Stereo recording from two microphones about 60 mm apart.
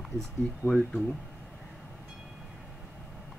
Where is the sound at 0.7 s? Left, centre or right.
Centre.